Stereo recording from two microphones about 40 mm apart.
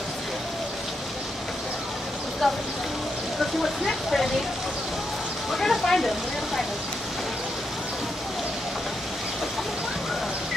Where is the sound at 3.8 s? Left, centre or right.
Centre.